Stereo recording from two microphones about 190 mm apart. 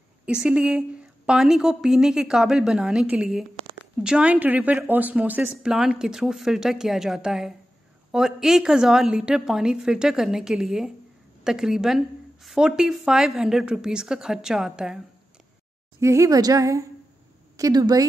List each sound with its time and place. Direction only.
0.2 s speech: 5° right (ahead or behind)
16.0 s a woman's voice: 15° right (ahead or behind)